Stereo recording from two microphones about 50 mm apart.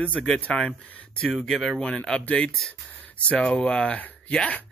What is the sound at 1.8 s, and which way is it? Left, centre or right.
A man's voice, centre.